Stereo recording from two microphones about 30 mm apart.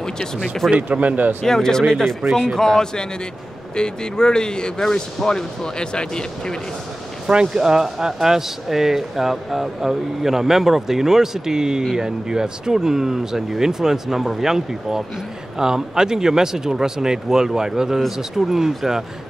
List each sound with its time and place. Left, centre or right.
0.7 s speech: right
1.4 s speech: centre
7.5 s speech: right